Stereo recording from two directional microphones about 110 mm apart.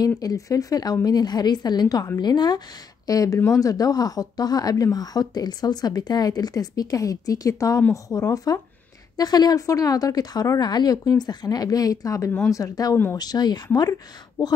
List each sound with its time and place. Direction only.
0.2 s speech: 35° left (ahead or behind)
12.9 s speech: 20° left (ahead or behind)
13.2 s speech: 40° left (ahead or behind)